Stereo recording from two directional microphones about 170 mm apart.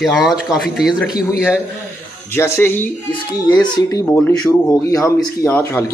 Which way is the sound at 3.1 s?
25° left (ahead or behind).